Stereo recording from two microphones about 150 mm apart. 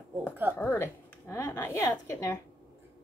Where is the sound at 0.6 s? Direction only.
15° left (ahead or behind).